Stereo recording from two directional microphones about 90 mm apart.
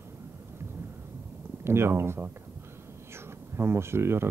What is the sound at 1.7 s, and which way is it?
Speech, 25° right (ahead or behind).